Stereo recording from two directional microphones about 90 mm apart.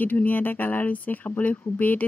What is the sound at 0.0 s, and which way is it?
Speech, 20° left (ahead or behind).